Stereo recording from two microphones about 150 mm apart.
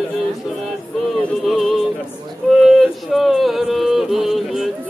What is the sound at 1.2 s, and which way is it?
Music, centre (ahead or behind).